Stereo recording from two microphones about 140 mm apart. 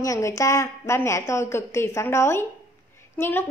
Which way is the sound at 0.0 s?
20° left (ahead or behind).